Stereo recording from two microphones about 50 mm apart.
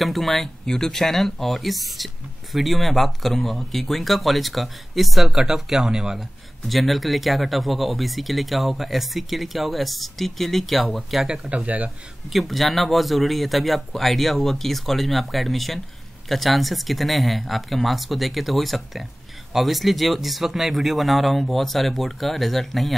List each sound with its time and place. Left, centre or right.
0.0 s speech: centre
6.6 s speech: centre
11.2 s speech: centre
11.5 s speech: right
12.3 s speech: centre